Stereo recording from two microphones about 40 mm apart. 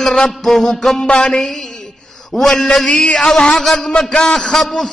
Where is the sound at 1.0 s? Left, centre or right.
Left.